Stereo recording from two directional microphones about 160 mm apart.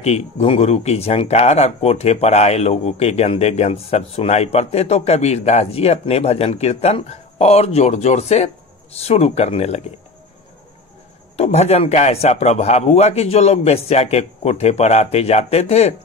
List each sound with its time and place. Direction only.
0.0 s speech: 40° left (ahead or behind)
11.3 s speech: 40° left (ahead or behind)